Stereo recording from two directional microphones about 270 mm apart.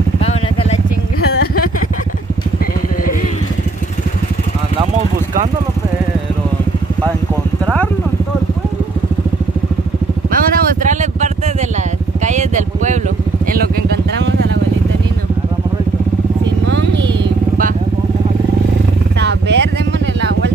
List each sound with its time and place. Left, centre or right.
0.2 s vehicle: left
1.4 s a sound: left
10.3 s a sound: right
12.3 s vehicle: right
16.7 s vehicle: right
19.1 s vehicle: right